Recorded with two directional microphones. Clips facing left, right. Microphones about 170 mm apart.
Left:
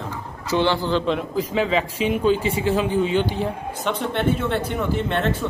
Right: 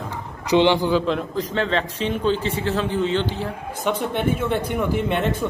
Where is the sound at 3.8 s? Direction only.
10° right (ahead or behind).